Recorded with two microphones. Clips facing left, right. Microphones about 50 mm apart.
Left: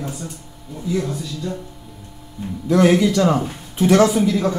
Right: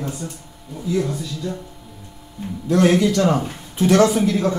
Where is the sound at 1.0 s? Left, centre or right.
Centre.